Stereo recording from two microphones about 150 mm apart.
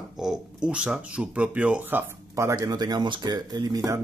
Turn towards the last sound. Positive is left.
turn(degrees=-25)  # may be behind; listen again after turning